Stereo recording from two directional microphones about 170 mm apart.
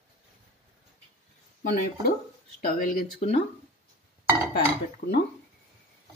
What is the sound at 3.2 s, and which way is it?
Speech, 40° left (ahead or behind).